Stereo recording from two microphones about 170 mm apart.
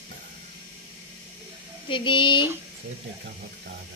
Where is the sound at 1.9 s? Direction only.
30° left (ahead or behind).